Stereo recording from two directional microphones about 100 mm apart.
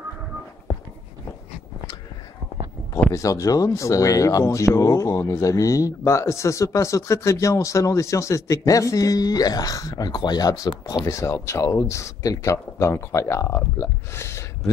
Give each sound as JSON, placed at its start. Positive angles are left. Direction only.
{"t": 2.9, "sound": "speech", "side_deg": 35}